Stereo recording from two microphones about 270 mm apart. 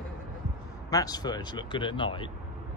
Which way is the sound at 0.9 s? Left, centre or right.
Centre.